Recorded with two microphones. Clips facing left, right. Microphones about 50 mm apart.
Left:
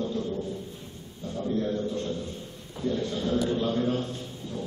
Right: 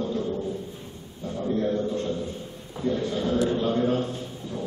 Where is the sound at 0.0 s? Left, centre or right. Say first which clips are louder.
Right 3 dB; centre.